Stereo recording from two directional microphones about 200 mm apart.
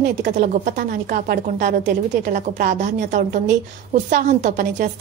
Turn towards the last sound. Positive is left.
turn(degrees=-40)  # may be behind; listen again after turning